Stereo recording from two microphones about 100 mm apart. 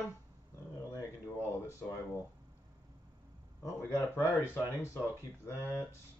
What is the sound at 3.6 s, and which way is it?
Speech, 25° left (ahead or behind).